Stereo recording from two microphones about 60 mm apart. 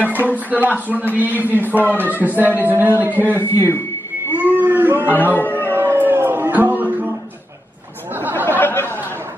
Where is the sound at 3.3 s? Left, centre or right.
Left.